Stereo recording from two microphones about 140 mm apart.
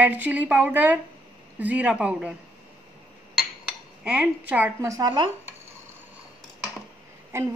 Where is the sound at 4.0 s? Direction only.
5° right (ahead or behind).